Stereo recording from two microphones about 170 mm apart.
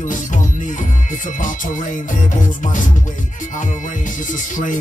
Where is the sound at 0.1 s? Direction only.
50° left (ahead or behind).